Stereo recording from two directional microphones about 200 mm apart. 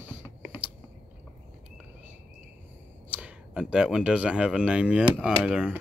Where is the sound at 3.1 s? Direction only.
5° right (ahead or behind).